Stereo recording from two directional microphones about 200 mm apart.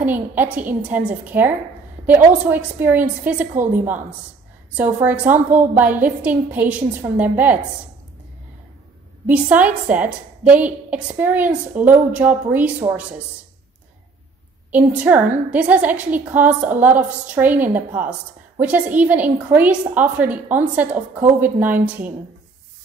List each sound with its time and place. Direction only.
0.0 s a woman's voice: 10° right (ahead or behind)
9.3 s a woman's voice: 5° right (ahead or behind)
14.7 s a woman's voice: 5° right (ahead or behind)